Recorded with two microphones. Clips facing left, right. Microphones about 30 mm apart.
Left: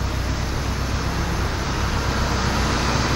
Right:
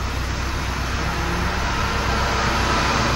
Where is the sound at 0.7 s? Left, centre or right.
Centre.